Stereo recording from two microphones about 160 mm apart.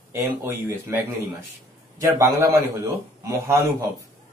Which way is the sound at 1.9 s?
20° right (ahead or behind).